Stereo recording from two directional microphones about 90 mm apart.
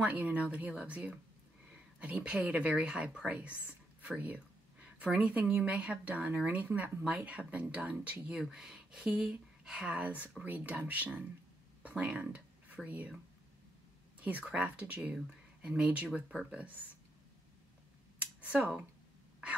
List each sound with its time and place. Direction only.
0.0 s speech: 20° right (ahead or behind)
14.2 s speech: 15° right (ahead or behind)
18.2 s a sound: 20° right (ahead or behind)